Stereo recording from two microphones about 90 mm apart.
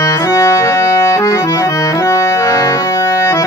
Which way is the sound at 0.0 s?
35° left (ahead or behind).